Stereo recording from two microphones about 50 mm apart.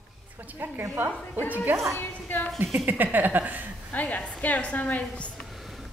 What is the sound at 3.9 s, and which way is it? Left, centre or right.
A woman's voice, left.